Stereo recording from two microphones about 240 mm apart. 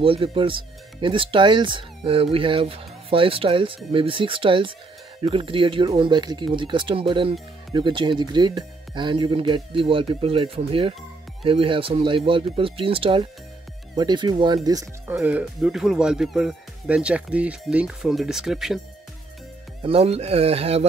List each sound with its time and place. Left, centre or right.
0.0 s speech: right
15.1 s speech: centre
19.8 s speech: right